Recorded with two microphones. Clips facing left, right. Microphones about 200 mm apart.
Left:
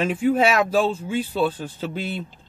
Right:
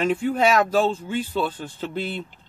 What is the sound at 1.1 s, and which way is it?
Speech, 10° left (ahead or behind).